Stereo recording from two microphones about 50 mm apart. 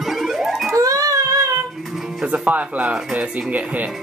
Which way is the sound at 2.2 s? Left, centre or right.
Right.